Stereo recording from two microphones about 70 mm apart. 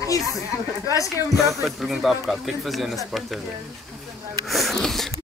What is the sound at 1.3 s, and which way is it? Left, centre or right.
Speech, centre.